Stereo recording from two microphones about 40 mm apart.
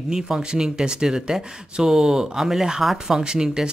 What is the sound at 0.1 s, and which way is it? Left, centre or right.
Speech, centre.